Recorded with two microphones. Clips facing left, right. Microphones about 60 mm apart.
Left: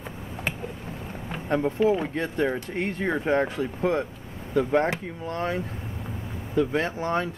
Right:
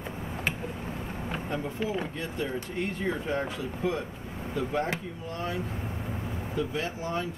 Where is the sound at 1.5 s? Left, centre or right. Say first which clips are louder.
Left 11 dB; left.